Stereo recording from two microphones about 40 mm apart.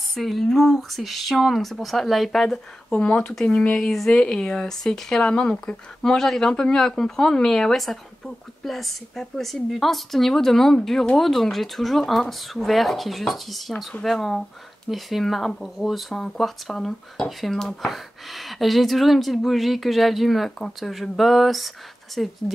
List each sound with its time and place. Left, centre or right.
0.1 s speech: centre
2.9 s speech: left
6.1 s speech: centre
16.7 s speech: centre
17.8 s speech: centre